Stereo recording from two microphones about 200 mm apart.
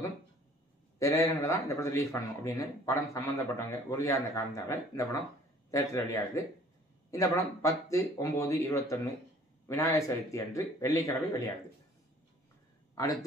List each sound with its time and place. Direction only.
0.9 s speech: 15° left (ahead or behind)